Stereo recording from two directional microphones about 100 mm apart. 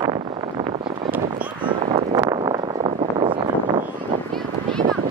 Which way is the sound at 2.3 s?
45° right (ahead or behind).